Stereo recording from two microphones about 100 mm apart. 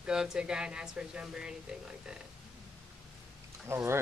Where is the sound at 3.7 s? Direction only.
25° right (ahead or behind).